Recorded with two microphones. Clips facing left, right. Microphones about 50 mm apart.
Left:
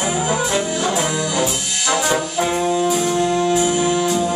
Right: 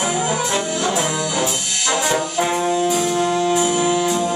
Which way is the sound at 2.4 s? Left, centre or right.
Centre.